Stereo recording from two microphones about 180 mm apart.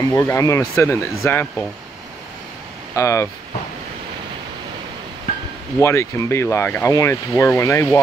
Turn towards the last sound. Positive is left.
turn(degrees=15)  # may be behind; listen again after turning